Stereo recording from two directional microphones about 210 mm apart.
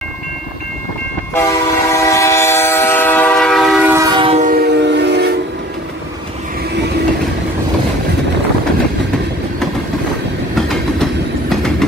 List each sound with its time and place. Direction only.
1.3 s train: 15° left (ahead or behind)
3.9 s train: 20° right (ahead or behind); by 5.3 s 55° right (ahead or behind)